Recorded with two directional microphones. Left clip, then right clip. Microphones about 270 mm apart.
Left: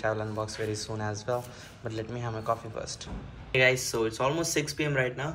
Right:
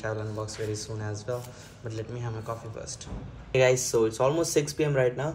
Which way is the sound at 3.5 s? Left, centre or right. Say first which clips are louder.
Right 2 dB; right.